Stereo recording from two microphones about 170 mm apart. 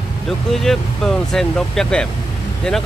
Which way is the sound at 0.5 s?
Centre (ahead or behind).